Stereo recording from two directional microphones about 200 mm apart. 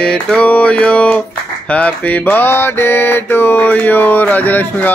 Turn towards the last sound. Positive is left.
turn(degrees=10)  # may be behind; listen again after turning